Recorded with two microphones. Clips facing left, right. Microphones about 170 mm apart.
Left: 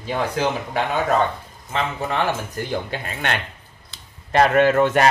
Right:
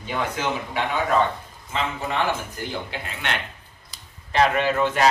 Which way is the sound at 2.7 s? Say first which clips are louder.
Left 5 dB; 50° left (ahead or behind).